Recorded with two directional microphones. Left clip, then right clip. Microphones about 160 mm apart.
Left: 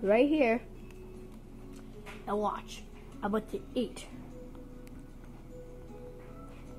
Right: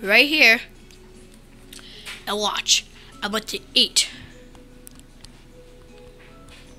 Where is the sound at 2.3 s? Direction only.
60° right (ahead or behind).